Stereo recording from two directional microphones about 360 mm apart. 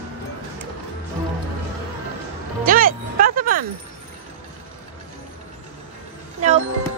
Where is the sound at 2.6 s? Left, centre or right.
Right.